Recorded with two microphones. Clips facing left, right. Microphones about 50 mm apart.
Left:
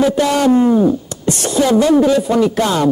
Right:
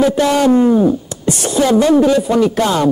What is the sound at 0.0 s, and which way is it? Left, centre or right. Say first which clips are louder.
A man's voice: right 1 dB; centre.